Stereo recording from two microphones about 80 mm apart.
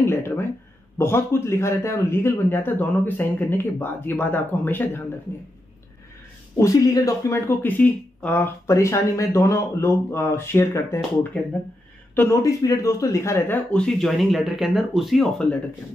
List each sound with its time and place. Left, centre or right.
0.0 s a sound: left
0.9 s a man's voice: left
6.6 s speech: left
7.6 s speech: left
8.6 s speech: left
12.2 s speech: left
13.5 s speech: centre